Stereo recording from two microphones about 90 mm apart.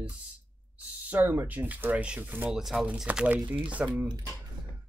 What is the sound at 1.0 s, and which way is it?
Speech, 20° right (ahead or behind).